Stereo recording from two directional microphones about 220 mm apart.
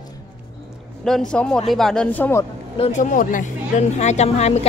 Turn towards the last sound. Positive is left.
turn(degrees=30)  # may be behind; listen again after turning